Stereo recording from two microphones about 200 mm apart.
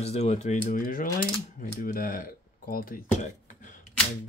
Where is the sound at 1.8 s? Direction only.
45° left (ahead or behind).